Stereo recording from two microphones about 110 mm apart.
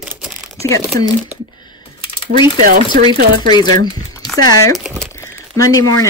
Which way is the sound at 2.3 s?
45° left (ahead or behind).